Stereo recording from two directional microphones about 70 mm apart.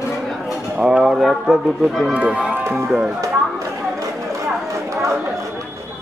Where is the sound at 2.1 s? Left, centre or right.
Centre.